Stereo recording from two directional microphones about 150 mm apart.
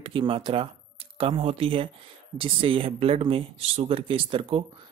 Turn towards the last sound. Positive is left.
turn(degrees=-35)  # may be behind; listen again after turning